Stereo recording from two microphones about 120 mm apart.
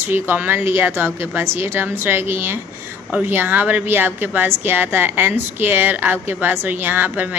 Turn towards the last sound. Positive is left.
turn(degrees=-15)  # may be behind; listen again after turning